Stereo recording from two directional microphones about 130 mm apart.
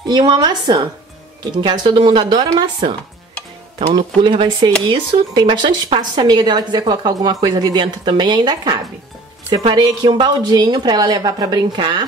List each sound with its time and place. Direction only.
0.0 s speech: 30° right (ahead or behind)